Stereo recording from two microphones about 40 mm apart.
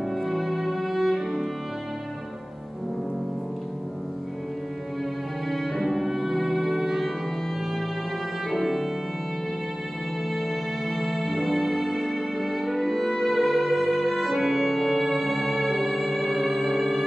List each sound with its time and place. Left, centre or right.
0.1 s music: centre
5.5 s music: centre
8.5 s music: centre
10.3 s music: centre